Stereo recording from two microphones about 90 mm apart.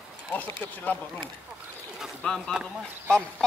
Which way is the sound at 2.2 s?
10° left (ahead or behind).